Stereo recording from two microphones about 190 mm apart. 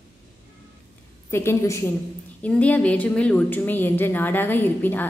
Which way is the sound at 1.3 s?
15° left (ahead or behind).